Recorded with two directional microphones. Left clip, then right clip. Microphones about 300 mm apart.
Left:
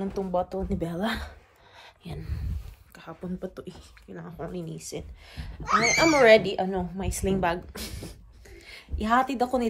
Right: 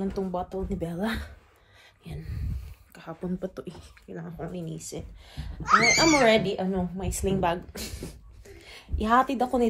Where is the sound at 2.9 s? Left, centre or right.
Centre.